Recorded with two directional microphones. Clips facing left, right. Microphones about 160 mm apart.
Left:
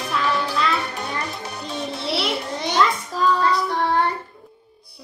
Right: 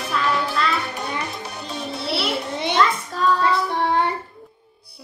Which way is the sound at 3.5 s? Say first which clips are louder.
Even; 20° right (ahead or behind).